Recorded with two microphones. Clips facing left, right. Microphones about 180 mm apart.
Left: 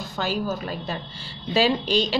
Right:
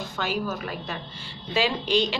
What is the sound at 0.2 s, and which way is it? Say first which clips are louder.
A woman's voice: left 3 dB; 30° left (ahead or behind).